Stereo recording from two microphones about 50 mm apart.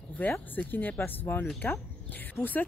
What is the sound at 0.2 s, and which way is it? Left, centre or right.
Speech, left.